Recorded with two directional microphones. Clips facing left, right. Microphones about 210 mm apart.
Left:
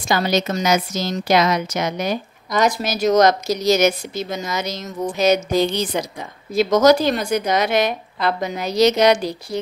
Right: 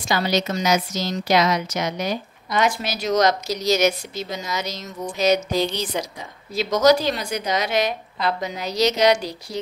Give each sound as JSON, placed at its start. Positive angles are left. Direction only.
{"t": 0.1, "sound": "a woman's voice", "side_deg": 50}